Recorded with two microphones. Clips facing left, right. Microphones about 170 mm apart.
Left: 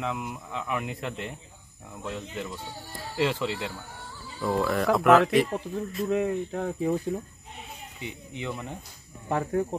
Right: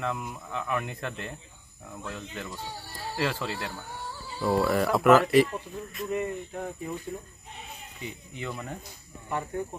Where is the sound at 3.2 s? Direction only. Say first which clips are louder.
Left 4 dB; 20° left (ahead or behind).